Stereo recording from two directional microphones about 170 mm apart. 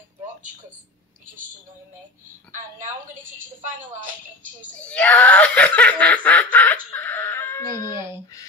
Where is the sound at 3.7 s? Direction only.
50° right (ahead or behind).